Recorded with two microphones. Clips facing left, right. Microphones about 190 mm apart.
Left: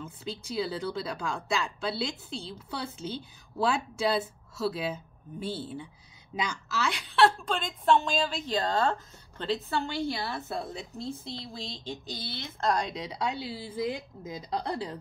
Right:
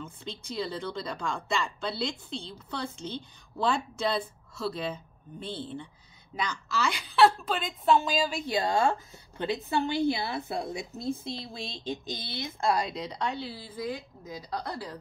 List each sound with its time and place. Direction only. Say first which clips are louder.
0.0 s a woman's voice: left 2 dB; 5° left (ahead or behind)
6.7 s a woman's voice: right 1 dB; centre (ahead or behind); by 15.0 s 25° left (ahead or behind)